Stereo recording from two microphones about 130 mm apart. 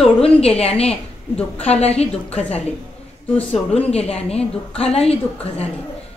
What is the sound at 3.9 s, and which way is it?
A woman's voice, 50° left (ahead or behind).